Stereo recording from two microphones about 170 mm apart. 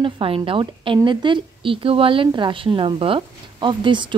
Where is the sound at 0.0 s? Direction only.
30° right (ahead or behind).